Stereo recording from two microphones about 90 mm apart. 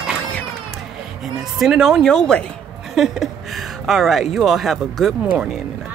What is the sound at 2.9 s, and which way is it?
Speech, 5° right (ahead or behind).